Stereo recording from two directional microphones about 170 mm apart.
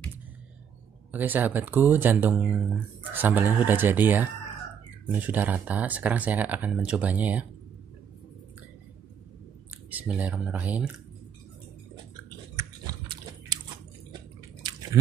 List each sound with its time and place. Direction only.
1.1 s speech: 10° right (ahead or behind)
9.8 s speech: 10° right (ahead or behind)
12.8 s biting: 25° right (ahead or behind)
14.6 s drip: 25° right (ahead or behind)